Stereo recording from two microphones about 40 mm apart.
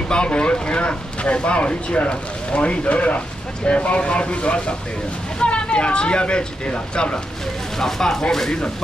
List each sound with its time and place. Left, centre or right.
0.1 s speech: left
7.8 s speech: centre